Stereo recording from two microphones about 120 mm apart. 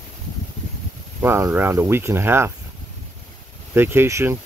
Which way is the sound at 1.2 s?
20° right (ahead or behind).